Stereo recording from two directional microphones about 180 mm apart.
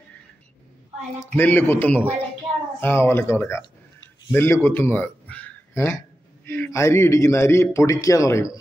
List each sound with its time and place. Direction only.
1.2 s a man's voice: 10° left (ahead or behind)